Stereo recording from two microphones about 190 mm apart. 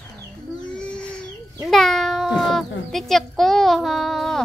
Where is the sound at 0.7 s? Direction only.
5° left (ahead or behind).